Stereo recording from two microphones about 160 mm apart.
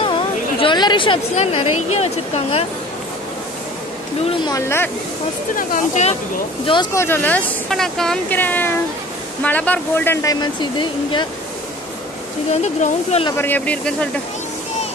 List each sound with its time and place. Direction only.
0.0 s a sound: 30° left (ahead or behind)
1.3 s speech: 40° left (ahead or behind)
4.5 s speech: 20° left (ahead or behind)
5.6 s speech: 55° left (ahead or behind)
6.6 s speech: 30° left (ahead or behind)
6.9 s a woman's voice: 15° left (ahead or behind)
12.6 s speech: 40° left (ahead or behind)
13.4 s speech: 10° left (ahead or behind)